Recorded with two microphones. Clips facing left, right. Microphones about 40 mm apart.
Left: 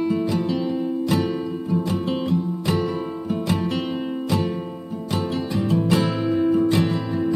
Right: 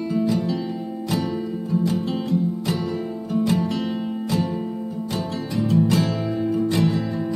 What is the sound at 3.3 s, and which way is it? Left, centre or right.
Music, left.